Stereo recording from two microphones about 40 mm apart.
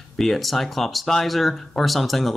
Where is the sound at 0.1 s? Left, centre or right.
Centre.